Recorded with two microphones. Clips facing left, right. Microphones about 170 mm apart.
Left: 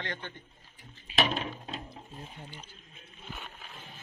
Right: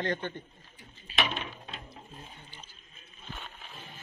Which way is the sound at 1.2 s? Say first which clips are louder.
Left 3 dB; 40° left (ahead or behind).